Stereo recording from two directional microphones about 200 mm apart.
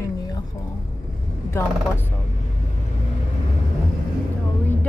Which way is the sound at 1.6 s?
15° left (ahead or behind).